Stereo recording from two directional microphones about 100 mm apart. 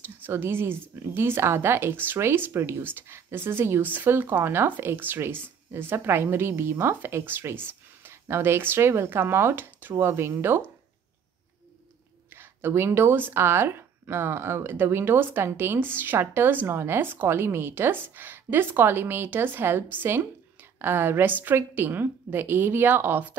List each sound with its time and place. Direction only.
0.0 s a woman's voice: 20° right (ahead or behind)
12.4 s a woman's voice: 25° right (ahead or behind)